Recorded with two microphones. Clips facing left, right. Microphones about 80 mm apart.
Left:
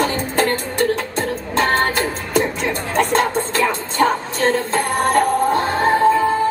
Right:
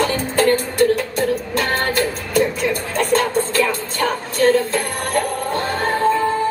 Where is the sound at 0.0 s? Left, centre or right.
Left.